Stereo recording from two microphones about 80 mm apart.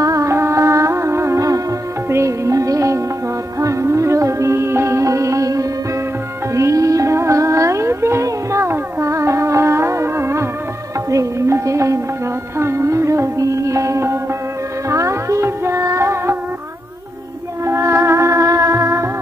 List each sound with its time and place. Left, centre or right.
0.0 s music: right
17.6 s music: right